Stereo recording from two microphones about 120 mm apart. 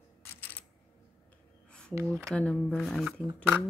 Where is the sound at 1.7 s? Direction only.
10° left (ahead or behind).